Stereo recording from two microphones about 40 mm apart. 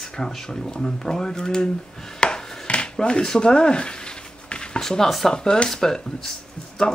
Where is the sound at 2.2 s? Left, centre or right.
Centre.